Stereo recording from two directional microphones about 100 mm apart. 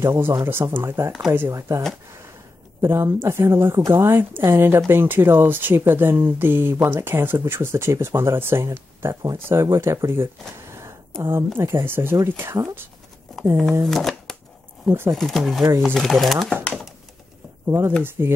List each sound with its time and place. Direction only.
0.0 s speech: 25° right (ahead or behind)
2.8 s speech: 25° right (ahead or behind)
10.6 s a sound: 30° right (ahead or behind)
11.2 s speech: 25° right (ahead or behind)
13.3 s a sound: 5° left (ahead or behind)
13.8 s speech: 5° left (ahead or behind)
14.9 s speech: 30° right (ahead or behind)
15.1 s speech: 5° left (ahead or behind)
17.6 s speech: 25° right (ahead or behind)